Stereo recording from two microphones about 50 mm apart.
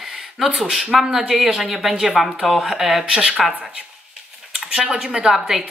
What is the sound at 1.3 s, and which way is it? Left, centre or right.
Speech, centre.